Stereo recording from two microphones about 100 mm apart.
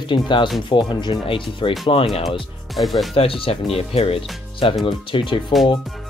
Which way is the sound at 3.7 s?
80° left.